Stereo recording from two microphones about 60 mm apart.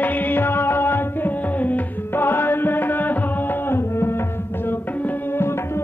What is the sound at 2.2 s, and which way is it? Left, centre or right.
Music, left.